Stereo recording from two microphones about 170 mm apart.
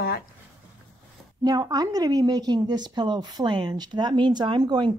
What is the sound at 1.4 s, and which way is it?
A woman's voice, 25° right (ahead or behind).